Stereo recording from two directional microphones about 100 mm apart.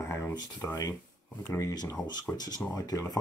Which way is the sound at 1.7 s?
40° left (ahead or behind).